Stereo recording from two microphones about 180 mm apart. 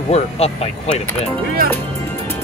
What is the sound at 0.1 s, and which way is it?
Speech, 35° left (ahead or behind).